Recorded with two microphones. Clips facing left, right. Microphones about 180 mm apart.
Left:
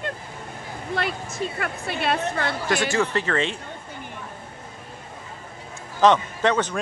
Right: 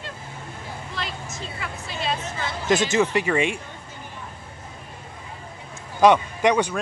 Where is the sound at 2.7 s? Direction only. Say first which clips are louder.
Right 5 dB; 20° right (ahead or behind).